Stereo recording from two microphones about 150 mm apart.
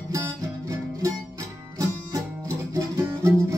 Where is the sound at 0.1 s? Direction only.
20° right (ahead or behind).